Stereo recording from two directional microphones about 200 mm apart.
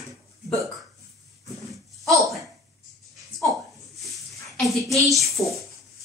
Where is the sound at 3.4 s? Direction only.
Centre (ahead or behind).